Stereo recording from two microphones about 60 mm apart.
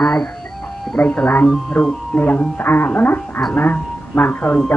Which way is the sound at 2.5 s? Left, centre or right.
Left.